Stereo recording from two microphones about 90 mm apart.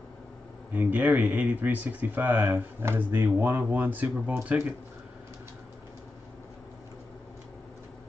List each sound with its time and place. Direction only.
0.7 s speech: 15° right (ahead or behind)